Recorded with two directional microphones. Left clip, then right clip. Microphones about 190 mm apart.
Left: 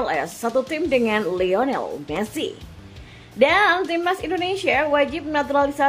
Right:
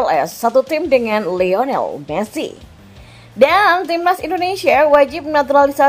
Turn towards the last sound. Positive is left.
turn(degrees=-25)  # may be behind; listen again after turning